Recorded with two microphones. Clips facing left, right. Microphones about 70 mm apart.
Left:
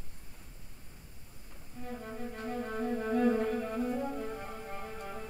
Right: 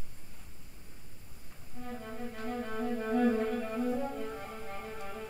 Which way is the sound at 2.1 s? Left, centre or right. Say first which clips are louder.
Even; centre.